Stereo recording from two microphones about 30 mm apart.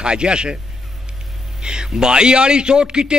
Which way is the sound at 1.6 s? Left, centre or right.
Right.